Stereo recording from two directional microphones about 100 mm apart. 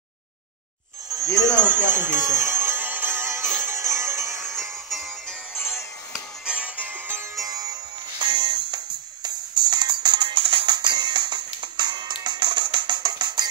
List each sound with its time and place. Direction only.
1.0 s music: 35° right (ahead or behind)
1.6 s music: 20° right (ahead or behind)
4.5 s music: 5° left (ahead or behind)
5.5 s music: 25° left (ahead or behind)
6.4 s music: 10° right (ahead or behind)
7.3 s music: 40° right (ahead or behind)